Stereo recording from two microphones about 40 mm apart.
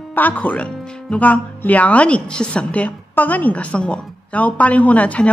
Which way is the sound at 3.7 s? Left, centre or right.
Left.